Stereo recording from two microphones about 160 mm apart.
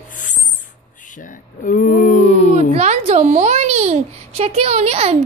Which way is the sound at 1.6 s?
60° left (ahead or behind).